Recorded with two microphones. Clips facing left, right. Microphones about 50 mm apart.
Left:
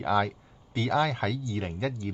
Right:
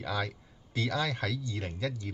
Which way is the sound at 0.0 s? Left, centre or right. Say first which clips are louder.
Left 8 dB; left.